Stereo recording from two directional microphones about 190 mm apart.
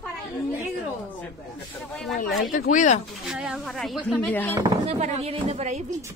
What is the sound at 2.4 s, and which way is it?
Speech, 45° left (ahead or behind).